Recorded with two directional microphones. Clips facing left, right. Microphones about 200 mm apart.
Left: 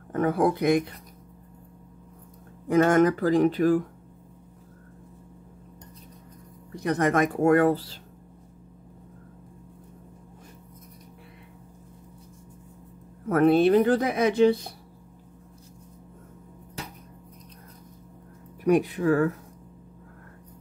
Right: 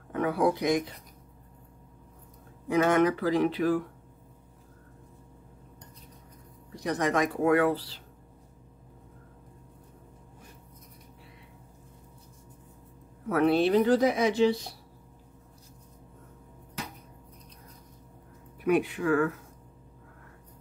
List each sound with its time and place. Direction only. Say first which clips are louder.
0.1 s speech: left 3 dB; 45° left (ahead or behind)
2.7 s speech: left 4 dB; 45° left (ahead or behind)
6.7 s speech: left 4 dB; 55° left (ahead or behind)
13.3 s speech: left 4 dB; 50° left (ahead or behind)
18.6 s speech: left 4 dB; 40° left (ahead or behind)